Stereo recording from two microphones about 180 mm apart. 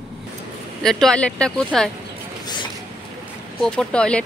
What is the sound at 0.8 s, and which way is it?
Speech, 5° left (ahead or behind).